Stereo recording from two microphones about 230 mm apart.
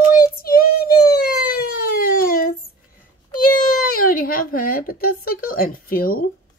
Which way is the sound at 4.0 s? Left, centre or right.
Left.